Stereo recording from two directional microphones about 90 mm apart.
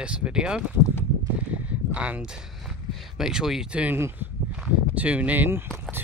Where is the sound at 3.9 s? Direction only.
30° right (ahead or behind).